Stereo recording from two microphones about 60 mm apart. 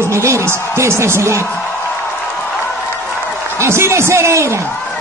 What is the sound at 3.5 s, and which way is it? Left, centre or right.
Speech, right.